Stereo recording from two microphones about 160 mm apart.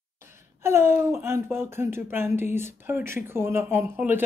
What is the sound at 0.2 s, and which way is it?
Speech, 15° right (ahead or behind).